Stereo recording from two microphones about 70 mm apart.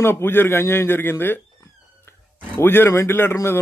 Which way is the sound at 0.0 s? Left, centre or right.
Left.